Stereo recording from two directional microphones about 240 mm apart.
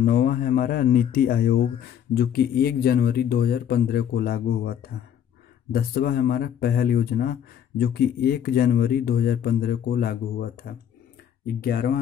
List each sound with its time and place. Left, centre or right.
0.0 s speech: left